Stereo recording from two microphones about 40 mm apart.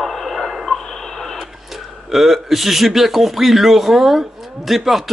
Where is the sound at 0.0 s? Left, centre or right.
Centre.